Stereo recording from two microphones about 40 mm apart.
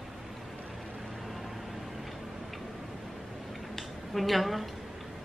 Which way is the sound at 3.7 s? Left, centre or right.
Centre.